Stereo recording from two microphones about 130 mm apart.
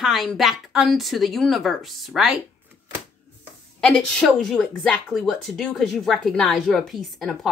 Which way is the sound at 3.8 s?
5° left (ahead or behind).